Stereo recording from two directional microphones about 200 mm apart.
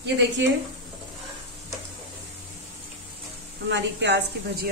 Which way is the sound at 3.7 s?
60° right (ahead or behind).